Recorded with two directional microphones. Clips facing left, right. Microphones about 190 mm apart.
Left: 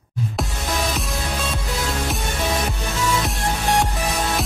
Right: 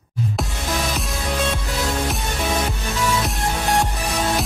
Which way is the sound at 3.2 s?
Centre (ahead or behind).